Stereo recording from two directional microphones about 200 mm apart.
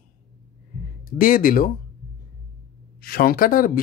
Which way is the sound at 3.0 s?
45° left (ahead or behind).